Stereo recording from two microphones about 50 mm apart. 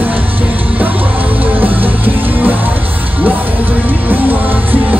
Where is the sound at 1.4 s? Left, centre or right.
Right.